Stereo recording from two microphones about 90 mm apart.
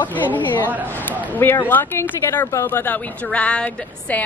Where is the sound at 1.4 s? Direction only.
20° left (ahead or behind).